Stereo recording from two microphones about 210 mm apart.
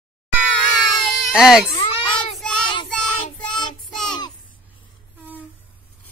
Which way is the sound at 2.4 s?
5° left (ahead or behind).